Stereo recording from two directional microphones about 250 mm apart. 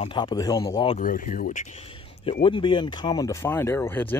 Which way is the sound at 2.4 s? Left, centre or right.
Centre.